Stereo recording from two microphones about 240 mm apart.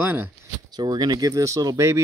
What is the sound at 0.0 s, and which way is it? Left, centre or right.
Speech, centre.